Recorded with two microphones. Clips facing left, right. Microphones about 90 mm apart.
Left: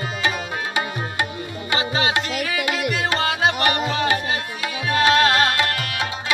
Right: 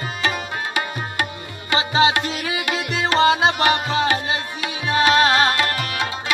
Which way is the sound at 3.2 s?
25° right (ahead or behind).